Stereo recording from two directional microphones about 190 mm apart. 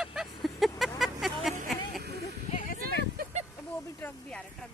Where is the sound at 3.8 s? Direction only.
10° left (ahead or behind).